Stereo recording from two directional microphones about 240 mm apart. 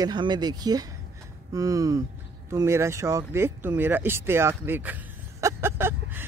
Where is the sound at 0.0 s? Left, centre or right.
Centre.